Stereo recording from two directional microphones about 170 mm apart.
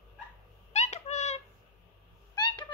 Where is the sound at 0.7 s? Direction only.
40° left (ahead or behind).